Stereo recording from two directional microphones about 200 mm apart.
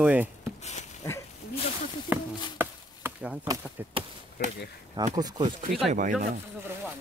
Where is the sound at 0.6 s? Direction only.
35° left (ahead or behind).